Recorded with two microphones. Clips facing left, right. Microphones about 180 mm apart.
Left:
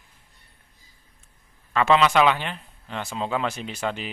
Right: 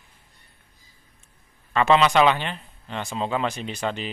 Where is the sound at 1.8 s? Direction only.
Centre (ahead or behind).